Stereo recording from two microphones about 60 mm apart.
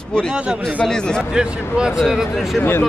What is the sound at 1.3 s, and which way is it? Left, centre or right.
Speech, centre.